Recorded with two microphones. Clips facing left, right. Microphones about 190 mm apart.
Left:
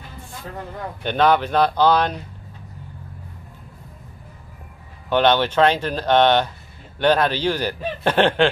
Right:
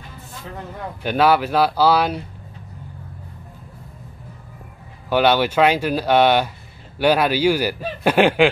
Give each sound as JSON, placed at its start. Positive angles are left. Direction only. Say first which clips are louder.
{"t": 1.0, "sound": "a man's voice", "louder": "right 1 dB", "side_deg": -5}
{"t": 5.1, "sound": "a man's voice", "louder": "right 1 dB", "side_deg": -10}